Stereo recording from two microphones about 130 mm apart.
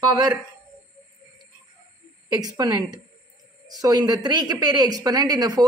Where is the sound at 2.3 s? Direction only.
30° right (ahead or behind).